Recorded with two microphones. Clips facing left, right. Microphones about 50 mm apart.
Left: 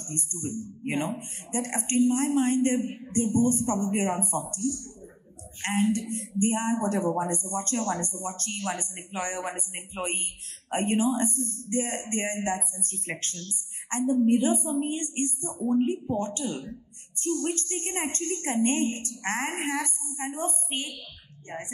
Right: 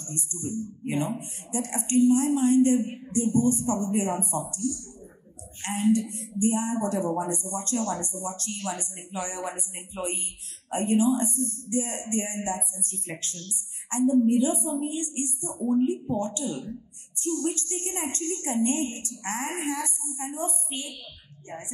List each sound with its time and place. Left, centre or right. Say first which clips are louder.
0.0 s a woman's voice: even; left